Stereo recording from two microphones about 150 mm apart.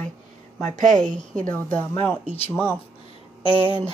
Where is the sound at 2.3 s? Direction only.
40° left (ahead or behind).